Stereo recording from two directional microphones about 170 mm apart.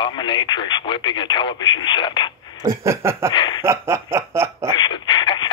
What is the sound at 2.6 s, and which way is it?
Snicker, 15° right (ahead or behind).